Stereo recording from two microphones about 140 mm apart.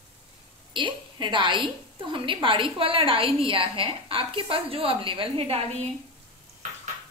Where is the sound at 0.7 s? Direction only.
35° right (ahead or behind).